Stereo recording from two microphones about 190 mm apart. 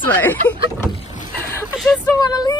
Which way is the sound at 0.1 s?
10° left (ahead or behind).